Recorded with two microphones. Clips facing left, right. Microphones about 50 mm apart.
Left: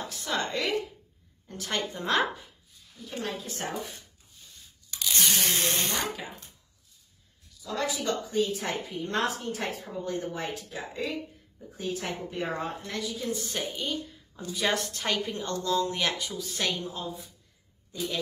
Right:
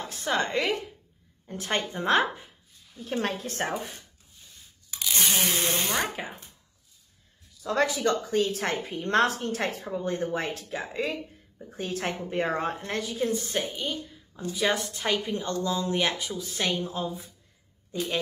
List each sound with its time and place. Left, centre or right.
0.0 s a woman's voice: right
3.0 s a woman's voice: right
4.9 s speech: centre
7.6 s a woman's voice: right
11.5 s a woman's voice: right
13.6 s a woman's voice: centre
16.2 s speech: right
17.9 s a woman's voice: right